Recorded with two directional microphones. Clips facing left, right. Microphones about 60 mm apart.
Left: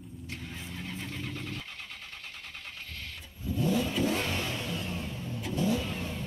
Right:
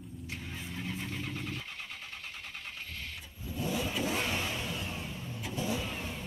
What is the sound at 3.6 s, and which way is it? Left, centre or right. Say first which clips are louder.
Vehicle: left 5 dB; centre.